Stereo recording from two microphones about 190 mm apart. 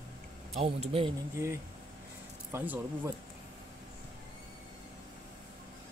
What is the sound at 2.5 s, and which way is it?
Speech, 15° right (ahead or behind).